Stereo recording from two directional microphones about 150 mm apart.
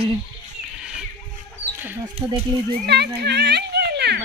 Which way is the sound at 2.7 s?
90° right.